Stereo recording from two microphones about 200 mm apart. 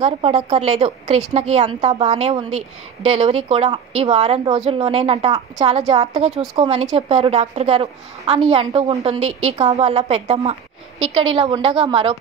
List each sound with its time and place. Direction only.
0.0 s a woman's voice: 30° right (ahead or behind)